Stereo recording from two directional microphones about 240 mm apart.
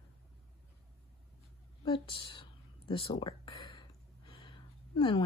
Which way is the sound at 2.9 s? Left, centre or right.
Centre.